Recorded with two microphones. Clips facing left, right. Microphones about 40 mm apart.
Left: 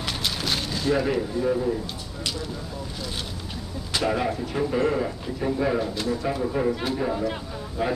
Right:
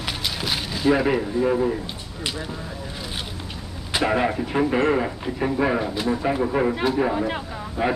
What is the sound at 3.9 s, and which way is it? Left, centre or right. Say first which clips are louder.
Speech: right 3 dB; right.